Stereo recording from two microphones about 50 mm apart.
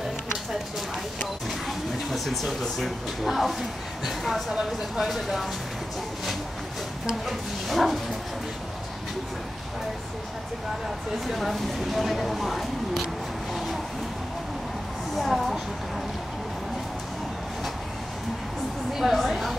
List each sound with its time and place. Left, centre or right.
1.7 s a sound: centre
3.3 s speech: centre
7.1 s speech: centre
11.2 s speech: centre
15.1 s speech: centre
18.9 s speech: centre